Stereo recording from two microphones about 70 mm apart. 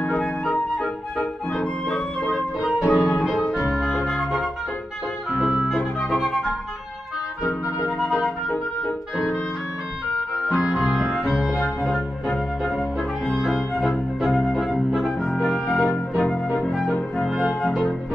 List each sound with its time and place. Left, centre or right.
0.0 s music: centre
1.6 s music: centre
5.4 s music: centre
5.7 s music: centre
8.2 s music: centre
10.3 s music: centre
16.2 s brass instrument: centre
16.6 s music: centre